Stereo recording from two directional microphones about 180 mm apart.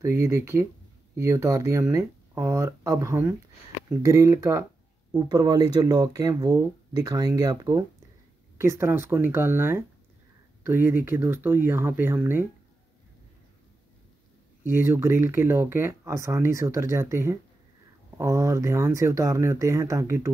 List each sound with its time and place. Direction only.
0.0 s speech: 15° right (ahead or behind)
14.6 s speech: 15° right (ahead or behind)